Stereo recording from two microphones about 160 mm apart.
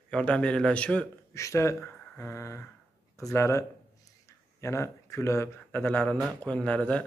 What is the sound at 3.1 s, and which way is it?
Speech, 20° left (ahead or behind).